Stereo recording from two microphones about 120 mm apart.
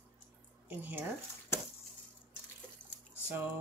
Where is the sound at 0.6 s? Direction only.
15° right (ahead or behind).